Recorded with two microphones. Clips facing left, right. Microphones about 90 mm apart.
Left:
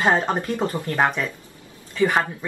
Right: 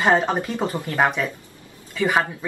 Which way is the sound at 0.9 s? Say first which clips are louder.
Right 2 dB; 5° right (ahead or behind).